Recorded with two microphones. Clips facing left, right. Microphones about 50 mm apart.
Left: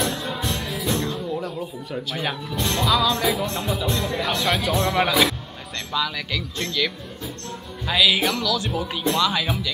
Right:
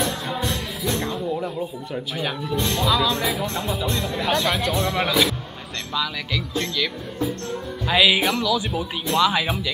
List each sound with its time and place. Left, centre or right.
0.0 s music: centre
2.6 s speech: centre
7.8 s speech: centre